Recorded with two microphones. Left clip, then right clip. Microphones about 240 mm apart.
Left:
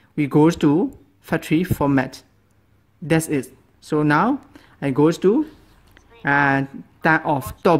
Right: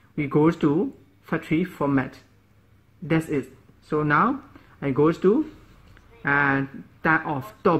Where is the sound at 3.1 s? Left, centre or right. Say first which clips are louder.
Left 4 dB; left.